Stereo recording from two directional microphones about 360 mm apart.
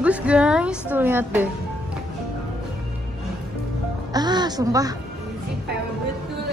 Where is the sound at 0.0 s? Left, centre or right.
Centre.